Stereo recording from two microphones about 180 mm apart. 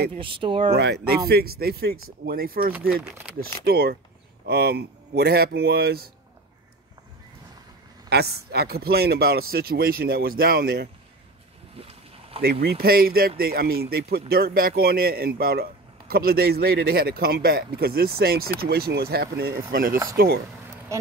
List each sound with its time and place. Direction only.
0.2 s speech: 30° right (ahead or behind)
0.7 s speech: 65° right (ahead or behind)
8.1 s speech: 60° right (ahead or behind)
11.7 s a sound: 30° right (ahead or behind)
12.6 s speech: 55° right (ahead or behind)